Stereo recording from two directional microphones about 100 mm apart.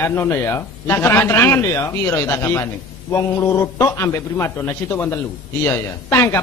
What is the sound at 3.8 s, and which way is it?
Speech, 25° left (ahead or behind).